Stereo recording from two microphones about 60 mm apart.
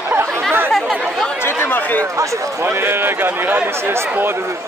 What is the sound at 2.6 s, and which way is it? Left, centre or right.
A man's voice, right.